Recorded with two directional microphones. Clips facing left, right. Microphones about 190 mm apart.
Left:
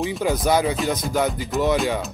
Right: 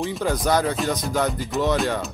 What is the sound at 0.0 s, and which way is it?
Speech, 5° left (ahead or behind).